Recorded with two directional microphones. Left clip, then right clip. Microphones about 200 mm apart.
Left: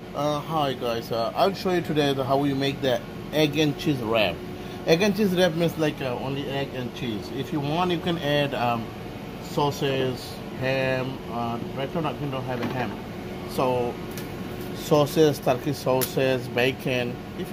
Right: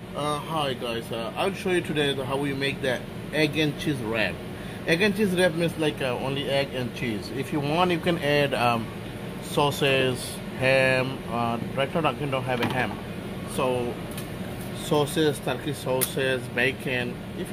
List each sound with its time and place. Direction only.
0.2 s speech: 20° left (ahead or behind); by 12.8 s centre (ahead or behind)
13.6 s speech: 10° left (ahead or behind)
14.9 s speech: 15° left (ahead or behind)